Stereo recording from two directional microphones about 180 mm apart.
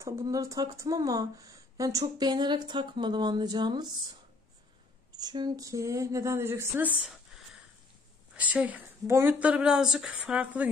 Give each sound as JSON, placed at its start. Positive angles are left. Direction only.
{"t": 0.0, "sound": "speech", "side_deg": -20}
{"t": 5.1, "sound": "speech", "side_deg": -25}
{"t": 8.4, "sound": "speech", "side_deg": -10}